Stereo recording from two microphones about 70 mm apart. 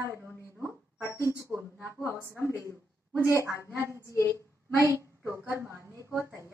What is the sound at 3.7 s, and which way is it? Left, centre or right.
A woman's voice, right.